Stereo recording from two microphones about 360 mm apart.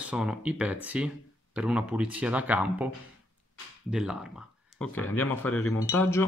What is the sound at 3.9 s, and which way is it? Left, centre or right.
Speech, centre.